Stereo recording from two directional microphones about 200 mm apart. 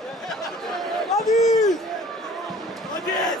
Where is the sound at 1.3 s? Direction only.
35° left (ahead or behind).